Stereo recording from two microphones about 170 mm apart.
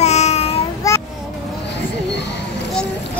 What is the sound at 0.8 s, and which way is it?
Vehicle, 20° left (ahead or behind).